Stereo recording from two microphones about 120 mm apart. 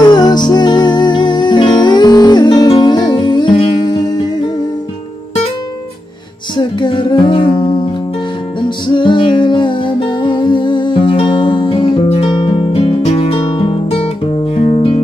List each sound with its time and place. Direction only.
0.0 s music: 35° left (ahead or behind)
6.5 s music: 40° left (ahead or behind); by 15.0 s 60° left (ahead or behind)